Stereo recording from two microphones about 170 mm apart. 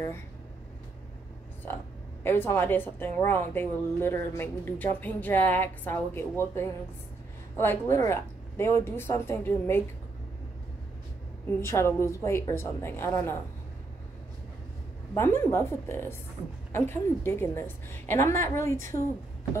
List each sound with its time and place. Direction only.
2.2 s a woman's voice: 15° left (ahead or behind)
11.6 s a woman's voice: 15° left (ahead or behind)
15.1 s a woman's voice: 15° left (ahead or behind)